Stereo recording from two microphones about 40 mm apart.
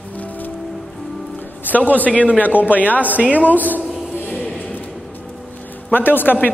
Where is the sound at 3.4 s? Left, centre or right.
Left.